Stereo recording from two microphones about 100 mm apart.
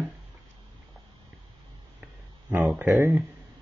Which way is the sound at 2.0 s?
15° right (ahead or behind).